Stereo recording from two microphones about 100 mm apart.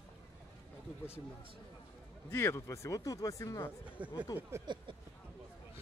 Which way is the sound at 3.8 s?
15° right (ahead or behind).